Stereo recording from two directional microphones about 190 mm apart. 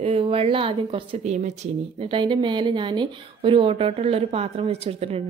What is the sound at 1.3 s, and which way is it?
A woman's voice, 35° right (ahead or behind).